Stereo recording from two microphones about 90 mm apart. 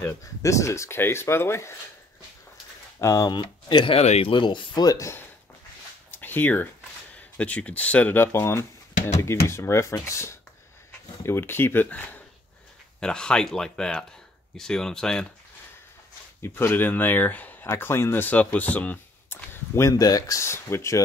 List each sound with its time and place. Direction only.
0.4 s speech: 35° left (ahead or behind)
3.0 s speech: 35° left (ahead or behind)
3.3 s speech: 55° left (ahead or behind)
4.8 s speech: 35° left (ahead or behind)
6.1 s speech: 20° left (ahead or behind)
16.4 s speech: 25° left (ahead or behind)
19.9 s speech: 45° left (ahead or behind)